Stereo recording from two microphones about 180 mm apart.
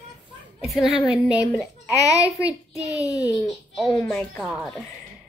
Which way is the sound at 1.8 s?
20° left (ahead or behind).